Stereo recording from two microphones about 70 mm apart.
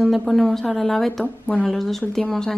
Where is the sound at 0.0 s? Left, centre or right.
Centre.